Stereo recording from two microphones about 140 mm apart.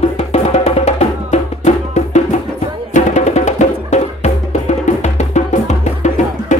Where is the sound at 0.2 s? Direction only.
50° left (ahead or behind).